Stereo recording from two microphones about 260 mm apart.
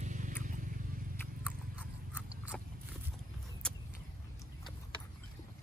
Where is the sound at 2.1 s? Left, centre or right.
Centre.